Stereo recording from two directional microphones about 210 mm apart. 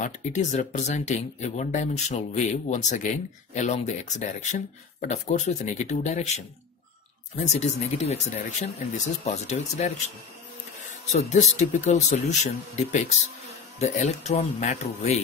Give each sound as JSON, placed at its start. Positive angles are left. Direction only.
{"t": 0.0, "sound": "speech", "side_deg": 35}